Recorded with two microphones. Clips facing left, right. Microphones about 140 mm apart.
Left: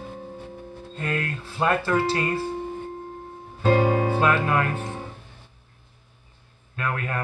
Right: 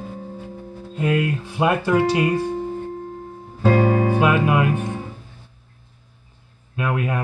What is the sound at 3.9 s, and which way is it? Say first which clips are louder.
Speech: right 3 dB; 15° right (ahead or behind).